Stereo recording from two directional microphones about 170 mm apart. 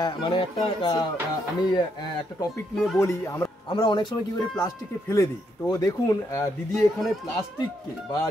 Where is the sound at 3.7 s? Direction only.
30° left (ahead or behind).